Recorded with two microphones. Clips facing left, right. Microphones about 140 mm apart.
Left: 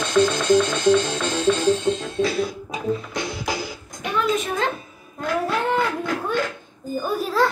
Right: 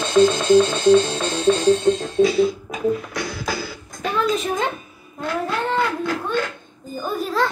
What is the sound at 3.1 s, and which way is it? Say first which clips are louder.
Music: even; 20° left (ahead or behind).